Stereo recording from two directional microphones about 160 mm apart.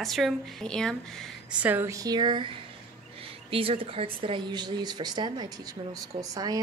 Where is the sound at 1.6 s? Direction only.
10° right (ahead or behind); by 2.5 s 30° right (ahead or behind).